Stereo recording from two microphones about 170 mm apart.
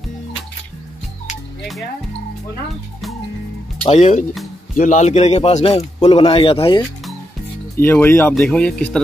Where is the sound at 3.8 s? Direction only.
40° left (ahead or behind).